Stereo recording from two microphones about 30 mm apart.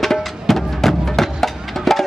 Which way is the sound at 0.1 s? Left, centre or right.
Centre.